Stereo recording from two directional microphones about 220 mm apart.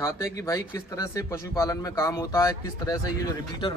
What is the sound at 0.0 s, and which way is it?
A man's voice, 15° left (ahead or behind).